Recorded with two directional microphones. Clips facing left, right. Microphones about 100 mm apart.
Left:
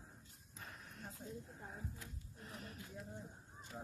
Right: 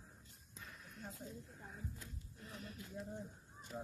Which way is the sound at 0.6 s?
40° left (ahead or behind).